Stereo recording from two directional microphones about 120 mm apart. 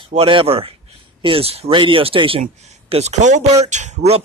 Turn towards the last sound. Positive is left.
turn(degrees=-70)  # may be behind; listen again after turning